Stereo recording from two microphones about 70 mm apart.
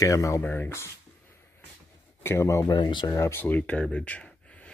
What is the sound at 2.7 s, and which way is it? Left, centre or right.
Speech, left.